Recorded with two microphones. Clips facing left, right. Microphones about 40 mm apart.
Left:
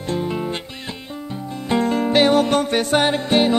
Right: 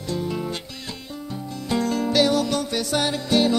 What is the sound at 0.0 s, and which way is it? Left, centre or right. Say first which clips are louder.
Music: left 4 dB; left.